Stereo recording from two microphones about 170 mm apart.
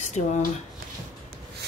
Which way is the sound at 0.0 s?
45° left (ahead or behind).